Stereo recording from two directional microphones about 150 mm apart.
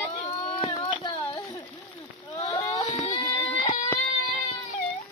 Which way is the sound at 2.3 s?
45° left (ahead or behind).